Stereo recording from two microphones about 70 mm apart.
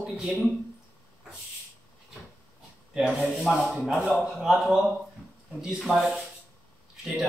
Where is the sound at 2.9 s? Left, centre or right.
Centre.